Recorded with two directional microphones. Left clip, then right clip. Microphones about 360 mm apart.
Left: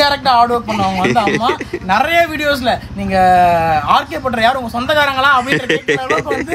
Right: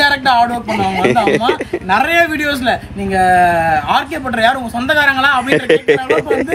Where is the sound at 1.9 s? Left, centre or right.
Centre.